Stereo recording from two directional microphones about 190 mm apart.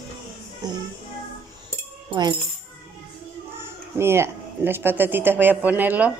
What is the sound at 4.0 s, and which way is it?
Speech, 15° right (ahead or behind).